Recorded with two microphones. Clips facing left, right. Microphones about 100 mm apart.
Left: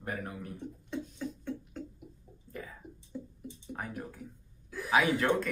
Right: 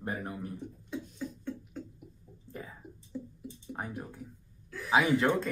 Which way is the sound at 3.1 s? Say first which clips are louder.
Right 2 dB; centre (ahead or behind).